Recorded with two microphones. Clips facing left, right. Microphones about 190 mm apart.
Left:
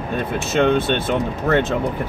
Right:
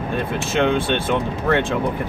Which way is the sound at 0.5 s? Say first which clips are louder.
Left 2 dB; 45° left (ahead or behind).